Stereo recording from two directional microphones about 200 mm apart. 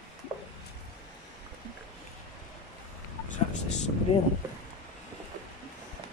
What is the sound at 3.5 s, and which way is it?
Vehicle, 35° left (ahead or behind).